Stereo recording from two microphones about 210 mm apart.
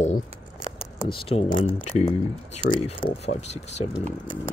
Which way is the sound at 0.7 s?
25° left (ahead or behind).